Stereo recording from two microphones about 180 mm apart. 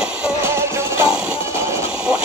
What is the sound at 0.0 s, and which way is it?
Music, 5° right (ahead or behind).